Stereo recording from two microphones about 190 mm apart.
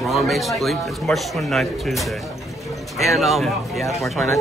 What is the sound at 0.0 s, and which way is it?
Speech, centre (ahead or behind).